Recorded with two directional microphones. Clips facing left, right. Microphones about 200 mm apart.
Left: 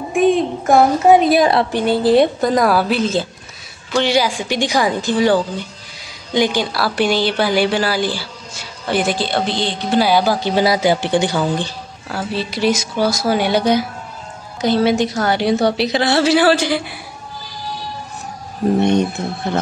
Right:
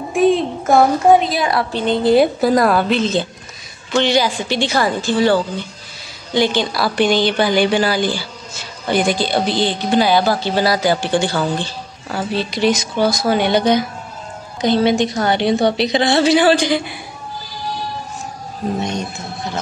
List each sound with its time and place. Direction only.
0.1 s speech: centre (ahead or behind)
1.7 s speech: 15° left (ahead or behind)
2.0 s speech: 5° right (ahead or behind); by 11.4 s 20° left (ahead or behind)
12.1 s speech: centre (ahead or behind)
18.8 s speech: 60° left (ahead or behind)